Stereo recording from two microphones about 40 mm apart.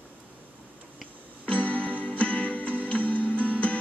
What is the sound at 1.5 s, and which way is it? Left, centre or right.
Music, left.